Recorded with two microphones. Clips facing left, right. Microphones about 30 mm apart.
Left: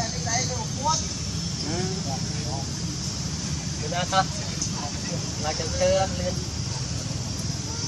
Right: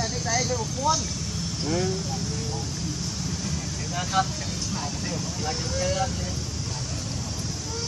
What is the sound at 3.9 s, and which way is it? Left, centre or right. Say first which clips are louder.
Speech: left 2 dB; centre.